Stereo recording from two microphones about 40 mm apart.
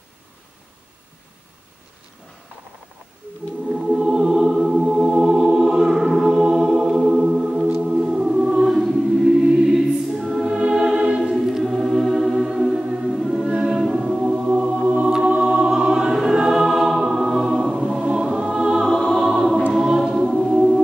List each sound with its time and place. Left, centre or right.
3.6 s music: centre
8.2 s choir: centre
9.5 s choir: centre
9.8 s choir: centre
10.4 s music: right
13.1 s a capella: centre
14.5 s music: right
15.0 s choir: centre
18.9 s music: centre
19.2 s choir: centre